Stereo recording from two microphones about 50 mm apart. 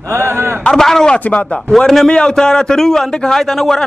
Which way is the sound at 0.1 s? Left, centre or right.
Right.